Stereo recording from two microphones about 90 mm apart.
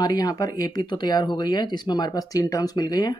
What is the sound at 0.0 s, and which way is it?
Speech, 45° left (ahead or behind).